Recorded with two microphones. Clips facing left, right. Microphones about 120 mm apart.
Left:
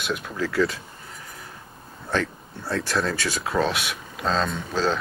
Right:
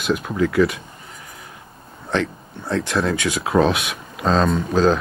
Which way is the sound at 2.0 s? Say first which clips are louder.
Right 3 dB; 20° right (ahead or behind).